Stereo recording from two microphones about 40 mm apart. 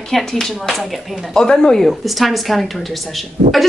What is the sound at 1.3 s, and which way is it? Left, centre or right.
Speech, centre.